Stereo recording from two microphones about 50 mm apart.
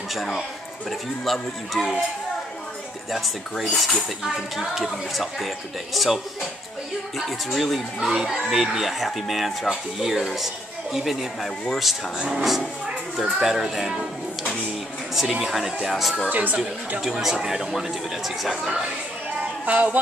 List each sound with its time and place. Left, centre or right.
0.1 s speech: centre
3.1 s speech: centre
8.1 s speech: centre
12.2 s speech: centre
13.2 s speech: centre
15.1 s speech: centre
16.3 s speech: right
17.0 s speech: centre
19.6 s speech: right